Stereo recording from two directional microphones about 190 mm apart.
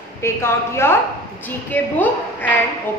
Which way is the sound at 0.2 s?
15° left (ahead or behind).